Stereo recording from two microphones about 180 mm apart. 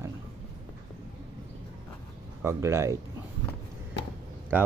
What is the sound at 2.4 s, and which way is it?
Speech, 15° right (ahead or behind).